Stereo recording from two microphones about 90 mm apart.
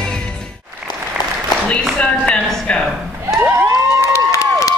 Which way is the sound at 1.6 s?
10° left (ahead or behind).